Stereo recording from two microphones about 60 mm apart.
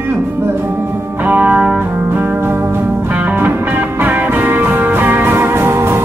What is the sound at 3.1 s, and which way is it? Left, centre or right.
Music, right.